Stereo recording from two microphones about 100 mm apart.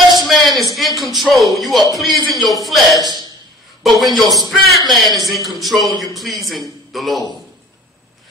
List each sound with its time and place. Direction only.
0.1 s a sound: centre (ahead or behind)
0.7 s speech: centre (ahead or behind)
3.0 s a man's voice: 45° right (ahead or behind)
3.8 s a man's voice: centre (ahead or behind)